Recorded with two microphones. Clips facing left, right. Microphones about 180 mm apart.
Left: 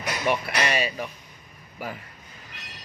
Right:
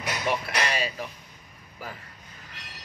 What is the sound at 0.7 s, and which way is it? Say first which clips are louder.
Speech: left 6 dB; 15° left (ahead or behind).